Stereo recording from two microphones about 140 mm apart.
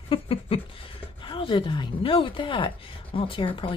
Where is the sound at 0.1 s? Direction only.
40° left (ahead or behind).